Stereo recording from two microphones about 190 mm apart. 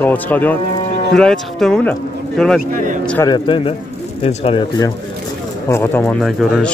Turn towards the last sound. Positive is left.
turn(degrees=0)  # may be behind; listen again after turning